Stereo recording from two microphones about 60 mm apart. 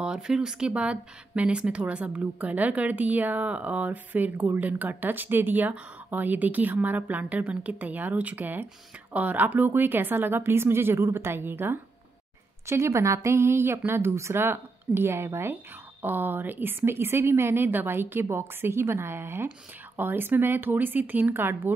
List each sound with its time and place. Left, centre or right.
0.0 s a woman's voice: centre; by 11.8 s right
12.6 s speech: right
16.0 s a woman's voice: right